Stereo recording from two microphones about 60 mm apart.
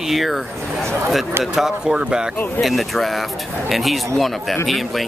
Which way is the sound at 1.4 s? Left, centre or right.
Centre.